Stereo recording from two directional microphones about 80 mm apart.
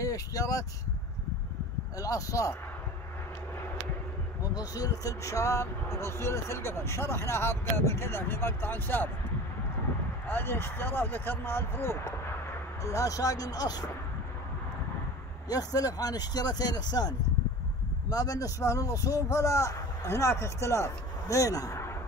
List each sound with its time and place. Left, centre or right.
0.0 s speech: left
2.0 s speech: left
4.6 s speech: left
10.2 s speech: left
15.4 s speech: left
18.1 s speech: left